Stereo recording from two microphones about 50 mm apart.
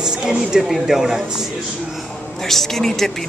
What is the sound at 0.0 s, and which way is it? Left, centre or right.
A woman's voice, centre.